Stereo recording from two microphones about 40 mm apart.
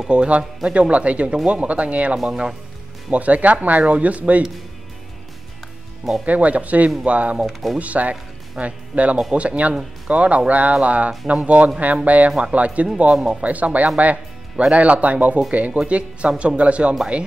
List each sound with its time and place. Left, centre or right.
0.1 s speech: right
2.2 s speech: centre
3.1 s speech: right
6.2 s speech: right
12.3 s speech: centre
12.5 s speech: right
13.1 s speech: centre
13.4 s speech: right
14.1 s speech: right